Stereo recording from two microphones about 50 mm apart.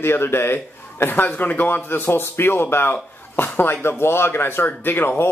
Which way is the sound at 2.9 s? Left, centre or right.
Left.